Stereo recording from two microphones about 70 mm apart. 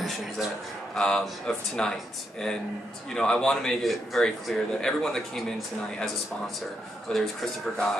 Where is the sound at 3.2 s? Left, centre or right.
Centre.